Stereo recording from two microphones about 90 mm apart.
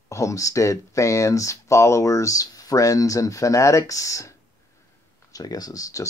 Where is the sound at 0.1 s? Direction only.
35° left (ahead or behind).